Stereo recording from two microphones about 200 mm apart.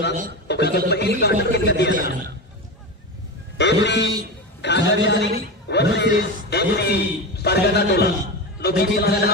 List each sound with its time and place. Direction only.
0.5 s a man's voice: 55° left (ahead or behind)
2.0 s a man's voice: 45° right (ahead or behind)
3.5 s a man's voice: 60° left (ahead or behind)
4.6 s a sound: 60° left (ahead or behind)
8.5 s a man's voice: 50° left (ahead or behind)